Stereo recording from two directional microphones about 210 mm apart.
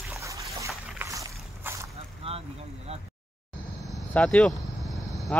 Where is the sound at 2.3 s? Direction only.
30° right (ahead or behind).